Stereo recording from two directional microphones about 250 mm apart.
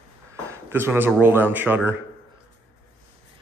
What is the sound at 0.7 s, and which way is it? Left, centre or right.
Speech, centre.